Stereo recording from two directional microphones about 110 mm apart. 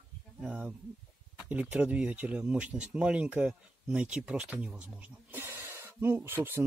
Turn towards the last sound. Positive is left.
turn(degrees=-20)  # may be behind; listen again after turning